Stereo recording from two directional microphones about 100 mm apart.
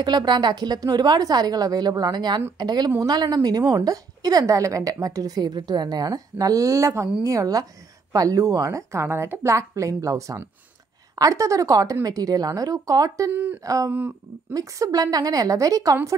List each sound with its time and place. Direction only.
0.0 s a woman's voice: 45° right (ahead or behind)
13.3 s speech: 15° right (ahead or behind)
13.7 s a woman's voice: 35° right (ahead or behind)